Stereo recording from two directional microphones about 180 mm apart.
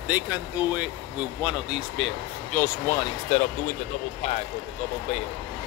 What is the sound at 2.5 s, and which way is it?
Speech, 15° left (ahead or behind).